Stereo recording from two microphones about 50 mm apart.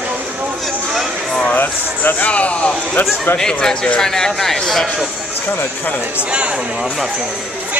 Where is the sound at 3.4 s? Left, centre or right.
Centre.